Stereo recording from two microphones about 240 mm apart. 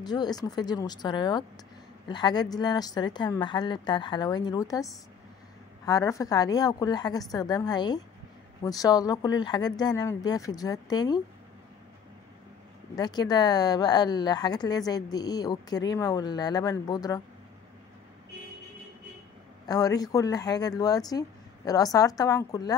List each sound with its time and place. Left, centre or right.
0.0 s speech: centre
12.9 s speech: centre
19.7 s speech: centre